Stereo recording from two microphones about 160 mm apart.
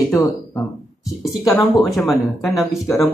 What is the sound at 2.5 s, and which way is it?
Speech, centre (ahead or behind).